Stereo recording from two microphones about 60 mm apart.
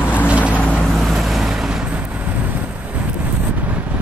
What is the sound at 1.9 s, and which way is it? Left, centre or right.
Vehicle, right.